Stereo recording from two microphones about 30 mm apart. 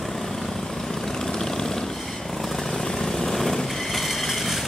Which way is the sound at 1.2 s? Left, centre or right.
Centre.